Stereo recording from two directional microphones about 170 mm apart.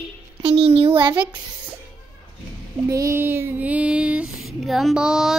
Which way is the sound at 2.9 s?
15° right (ahead or behind).